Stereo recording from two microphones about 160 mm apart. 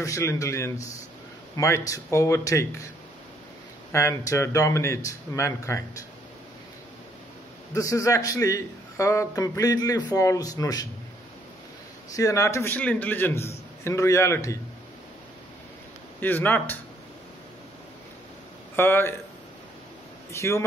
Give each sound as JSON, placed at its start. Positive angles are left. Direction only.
{"t": 0.0, "sound": "a man's voice", "side_deg": 20}
{"t": 3.9, "sound": "a man's voice", "side_deg": 20}
{"t": 7.7, "sound": "a man's voice", "side_deg": 20}
{"t": 12.2, "sound": "a man's voice", "side_deg": 20}
{"t": 16.2, "sound": "a man's voice", "side_deg": 10}
{"t": 18.8, "sound": "a man's voice", "side_deg": 15}
{"t": 20.3, "sound": "a man's voice", "side_deg": 15}